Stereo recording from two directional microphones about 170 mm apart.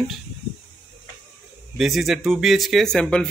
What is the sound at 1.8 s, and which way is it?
Speech, centre (ahead or behind).